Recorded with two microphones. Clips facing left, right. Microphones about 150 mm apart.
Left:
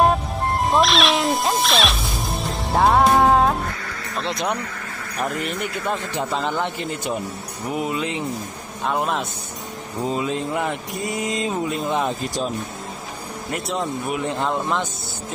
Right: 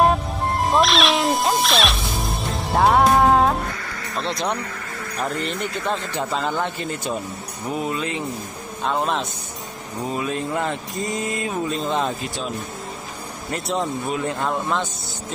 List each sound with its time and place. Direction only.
0.0 s music: centre (ahead or behind)
4.2 s speech: centre (ahead or behind)
5.9 s a man's voice: 15° left (ahead or behind)
10.0 s a man's voice: 20° left (ahead or behind)
14.0 s a man's voice: 15° left (ahead or behind)